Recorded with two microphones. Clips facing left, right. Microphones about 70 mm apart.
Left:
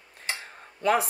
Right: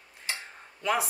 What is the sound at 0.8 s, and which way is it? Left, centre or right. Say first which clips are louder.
Speech: left 4 dB; left.